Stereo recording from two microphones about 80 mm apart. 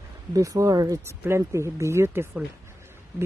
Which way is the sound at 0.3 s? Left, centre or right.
Right.